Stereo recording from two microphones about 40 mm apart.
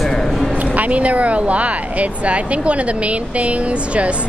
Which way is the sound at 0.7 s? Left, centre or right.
Right.